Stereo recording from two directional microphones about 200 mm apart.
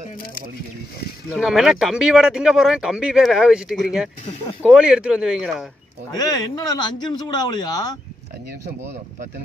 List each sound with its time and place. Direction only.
1.3 s speech: centre (ahead or behind)
6.1 s a man's voice: 20° left (ahead or behind)